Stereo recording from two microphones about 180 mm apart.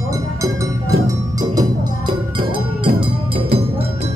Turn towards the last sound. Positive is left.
turn(degrees=-30)  # may be behind; listen again after turning